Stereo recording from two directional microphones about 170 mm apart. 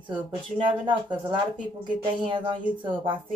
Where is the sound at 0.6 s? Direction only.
30° right (ahead or behind).